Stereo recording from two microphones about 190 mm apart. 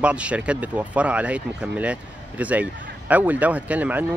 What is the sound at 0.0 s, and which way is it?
Speech, 5° right (ahead or behind).